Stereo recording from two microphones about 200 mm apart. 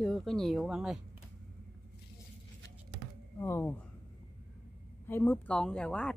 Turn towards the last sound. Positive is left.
turn(degrees=5)  # may be behind; listen again after turning